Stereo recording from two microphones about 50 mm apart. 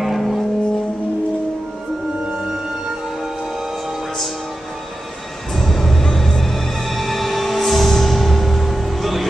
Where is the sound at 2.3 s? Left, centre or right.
Centre.